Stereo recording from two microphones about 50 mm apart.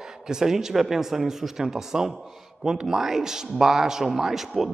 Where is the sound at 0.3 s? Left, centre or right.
Centre.